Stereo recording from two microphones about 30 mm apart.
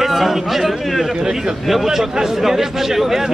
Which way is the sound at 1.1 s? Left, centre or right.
Right.